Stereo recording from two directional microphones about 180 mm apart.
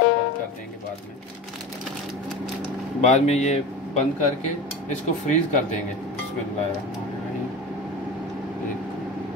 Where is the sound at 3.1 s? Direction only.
40° left (ahead or behind).